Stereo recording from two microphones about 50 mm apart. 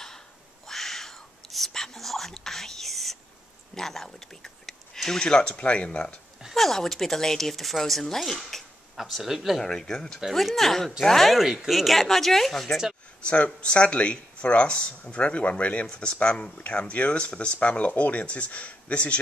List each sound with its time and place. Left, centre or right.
0.7 s whispering: centre
3.7 s speech: centre
6.5 s speech: centre
9.7 s speech: centre
13.2 s speech: left